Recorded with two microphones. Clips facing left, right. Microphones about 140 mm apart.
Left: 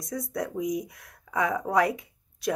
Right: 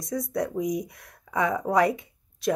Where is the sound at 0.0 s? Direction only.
5° left (ahead or behind).